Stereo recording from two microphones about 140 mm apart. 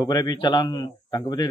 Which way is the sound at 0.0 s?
30° left (ahead or behind).